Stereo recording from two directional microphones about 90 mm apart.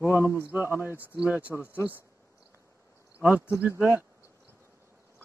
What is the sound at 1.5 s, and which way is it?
Speech, 30° left (ahead or behind).